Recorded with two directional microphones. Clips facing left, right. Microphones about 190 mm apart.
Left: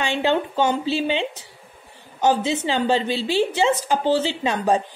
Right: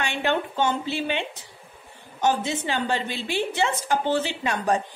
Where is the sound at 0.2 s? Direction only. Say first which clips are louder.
Left 3 dB; 15° left (ahead or behind).